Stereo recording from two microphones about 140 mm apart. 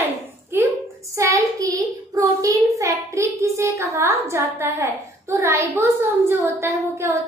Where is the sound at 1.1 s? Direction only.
20° right (ahead or behind).